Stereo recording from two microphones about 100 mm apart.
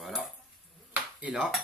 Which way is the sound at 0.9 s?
10° right (ahead or behind).